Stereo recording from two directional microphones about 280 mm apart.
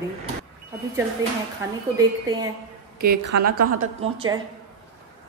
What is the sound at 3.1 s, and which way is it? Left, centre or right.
Speech, right.